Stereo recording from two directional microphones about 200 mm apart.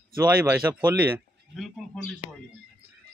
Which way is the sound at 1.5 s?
Centre (ahead or behind).